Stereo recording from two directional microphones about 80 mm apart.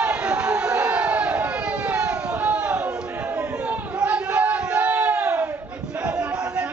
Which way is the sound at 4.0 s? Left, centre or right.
Centre.